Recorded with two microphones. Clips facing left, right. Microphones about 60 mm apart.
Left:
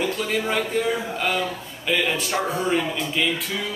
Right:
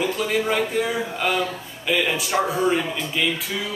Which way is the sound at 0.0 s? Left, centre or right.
Centre.